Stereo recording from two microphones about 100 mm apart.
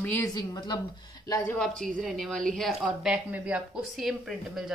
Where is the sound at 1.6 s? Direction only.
5° left (ahead or behind); by 3.8 s 15° right (ahead or behind).